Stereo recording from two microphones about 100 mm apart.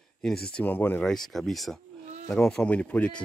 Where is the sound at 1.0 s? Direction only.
5° left (ahead or behind).